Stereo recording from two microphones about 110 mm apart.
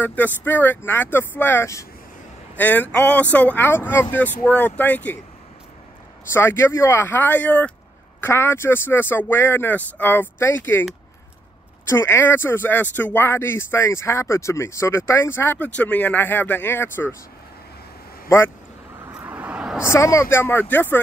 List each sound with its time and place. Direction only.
0.0 s speech: 15° left (ahead or behind)
6.3 s speech: 25° left (ahead or behind)
11.9 s speech: 20° left (ahead or behind)
19.2 s vehicle: 15° right (ahead or behind)
19.8 s speech: 25° left (ahead or behind)